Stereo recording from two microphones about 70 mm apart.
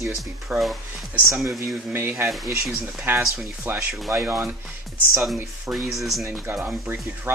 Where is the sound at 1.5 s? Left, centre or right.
Right.